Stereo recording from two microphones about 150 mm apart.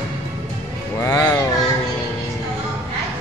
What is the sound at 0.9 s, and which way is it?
Music, 20° left (ahead or behind).